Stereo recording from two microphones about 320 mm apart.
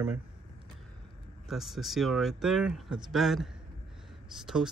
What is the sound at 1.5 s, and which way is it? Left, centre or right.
Speech, centre.